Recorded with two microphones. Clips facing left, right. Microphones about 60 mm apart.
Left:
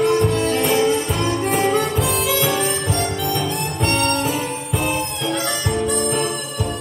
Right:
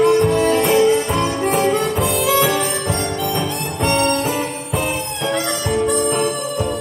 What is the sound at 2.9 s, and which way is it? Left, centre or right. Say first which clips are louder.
Music: right 1 dB; right.